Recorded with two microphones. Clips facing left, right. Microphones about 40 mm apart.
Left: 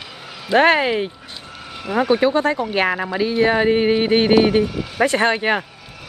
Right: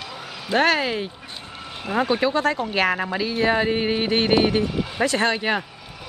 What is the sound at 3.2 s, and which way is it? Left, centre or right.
Speech, centre.